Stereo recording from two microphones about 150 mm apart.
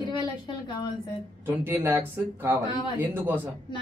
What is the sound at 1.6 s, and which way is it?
Speech, 15° right (ahead or behind).